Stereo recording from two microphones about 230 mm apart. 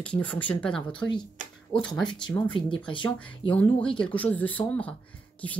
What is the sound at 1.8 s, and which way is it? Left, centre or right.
Speech, centre.